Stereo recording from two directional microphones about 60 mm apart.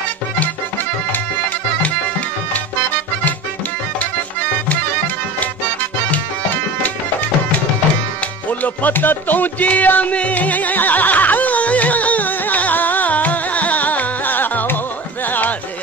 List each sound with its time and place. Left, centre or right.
6.1 s tabla: left
8.5 s music: left